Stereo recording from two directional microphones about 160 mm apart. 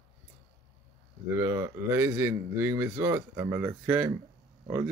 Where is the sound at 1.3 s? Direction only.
15° right (ahead or behind).